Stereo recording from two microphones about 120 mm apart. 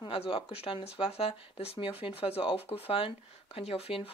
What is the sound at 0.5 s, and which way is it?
Speech, 50° left (ahead or behind).